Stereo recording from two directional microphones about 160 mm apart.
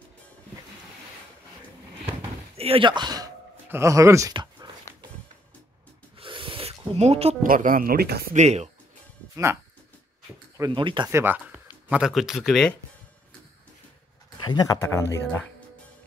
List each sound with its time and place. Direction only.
2.5 s speech: 35° right (ahead or behind)
3.6 s speech: 15° right (ahead or behind)
4.9 s music: 20° left (ahead or behind)
6.1 s a sound: 30° right (ahead or behind)
7.0 s speech: 40° right (ahead or behind)
7.4 s speech: 60° right (ahead or behind)
8.4 s speech: 45° right (ahead or behind)
9.3 s speech: 15° right (ahead or behind)
10.6 s speech: 30° right (ahead or behind)
11.1 s speech: 15° right (ahead or behind)
14.4 s speech: 25° left (ahead or behind)